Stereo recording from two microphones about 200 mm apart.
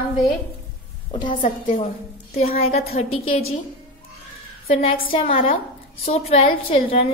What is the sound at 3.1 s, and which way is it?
Speech, 90° left.